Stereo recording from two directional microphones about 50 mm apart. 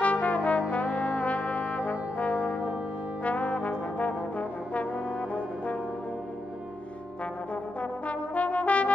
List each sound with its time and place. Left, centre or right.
0.0 s trombone: left
8.1 s brass instrument: left